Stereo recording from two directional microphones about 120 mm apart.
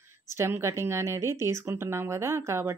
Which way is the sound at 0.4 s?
20° right (ahead or behind).